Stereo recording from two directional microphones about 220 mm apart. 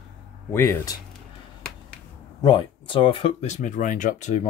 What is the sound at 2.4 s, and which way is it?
Speech, 20° left (ahead or behind).